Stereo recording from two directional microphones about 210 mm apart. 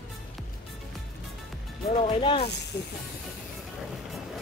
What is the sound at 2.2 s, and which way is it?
Speech, 25° left (ahead or behind).